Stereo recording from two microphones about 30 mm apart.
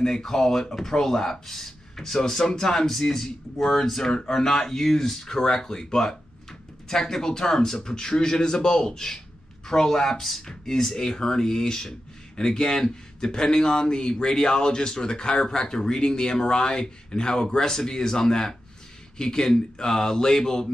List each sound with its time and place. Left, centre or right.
0.0 s speech: centre